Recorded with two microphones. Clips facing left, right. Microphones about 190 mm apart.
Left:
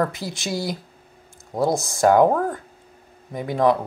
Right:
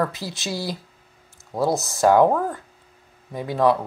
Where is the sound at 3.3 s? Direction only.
15° left (ahead or behind).